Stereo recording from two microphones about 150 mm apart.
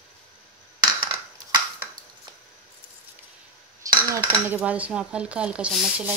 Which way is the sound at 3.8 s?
25° right (ahead or behind).